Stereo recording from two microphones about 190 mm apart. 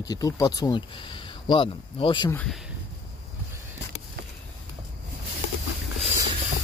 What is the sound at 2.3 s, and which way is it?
Speech, 10° left (ahead or behind).